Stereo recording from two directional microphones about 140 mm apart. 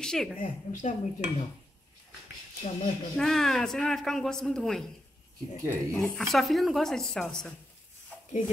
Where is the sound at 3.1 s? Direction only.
5° left (ahead or behind).